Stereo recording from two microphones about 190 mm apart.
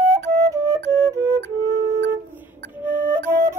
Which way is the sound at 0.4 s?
15° right (ahead or behind).